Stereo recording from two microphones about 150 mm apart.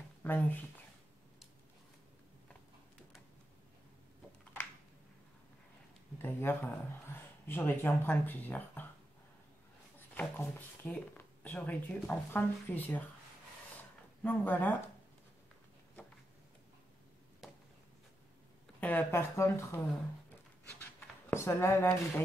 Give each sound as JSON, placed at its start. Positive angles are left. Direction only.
{"t": 0.2, "sound": "speech", "side_deg": 10}
{"t": 6.1, "sound": "speech", "side_deg": 15}
{"t": 9.9, "sound": "speech", "side_deg": 15}
{"t": 14.2, "sound": "speech", "side_deg": 10}
{"t": 17.4, "sound": "a sound", "side_deg": 0}
{"t": 18.8, "sound": "speech", "side_deg": 10}
{"t": 21.3, "sound": "speech", "side_deg": 15}